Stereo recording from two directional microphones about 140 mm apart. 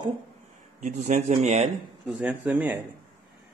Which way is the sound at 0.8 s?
65° right (ahead or behind).